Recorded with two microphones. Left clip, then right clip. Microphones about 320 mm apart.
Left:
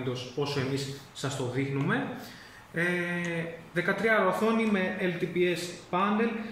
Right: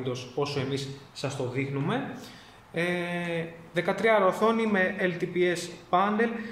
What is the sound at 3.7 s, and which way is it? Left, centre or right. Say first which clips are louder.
A man's voice: right 2 dB; centre.